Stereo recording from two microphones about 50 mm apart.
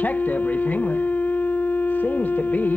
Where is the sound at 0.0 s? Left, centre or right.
Left.